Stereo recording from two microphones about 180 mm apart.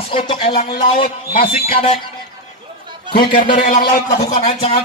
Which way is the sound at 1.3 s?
35° left (ahead or behind).